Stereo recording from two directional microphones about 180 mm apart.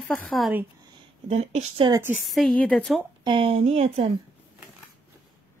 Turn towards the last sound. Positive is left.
turn(degrees=-35)  # may be behind; listen again after turning